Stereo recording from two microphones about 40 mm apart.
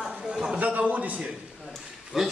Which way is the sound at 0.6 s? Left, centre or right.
Right.